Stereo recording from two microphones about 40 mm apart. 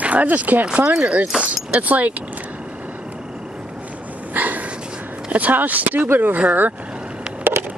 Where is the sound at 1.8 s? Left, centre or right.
Right.